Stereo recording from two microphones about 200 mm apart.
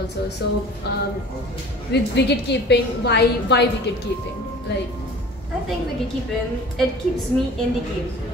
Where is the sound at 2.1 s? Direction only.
60° left (ahead or behind).